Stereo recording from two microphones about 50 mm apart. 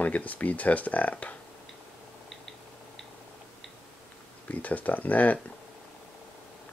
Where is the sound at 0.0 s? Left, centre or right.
Left.